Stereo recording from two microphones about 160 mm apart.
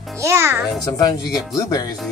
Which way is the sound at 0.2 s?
15° right (ahead or behind).